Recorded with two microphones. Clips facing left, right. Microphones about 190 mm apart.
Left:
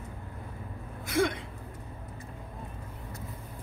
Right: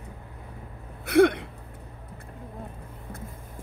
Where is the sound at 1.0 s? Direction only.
60° right (ahead or behind).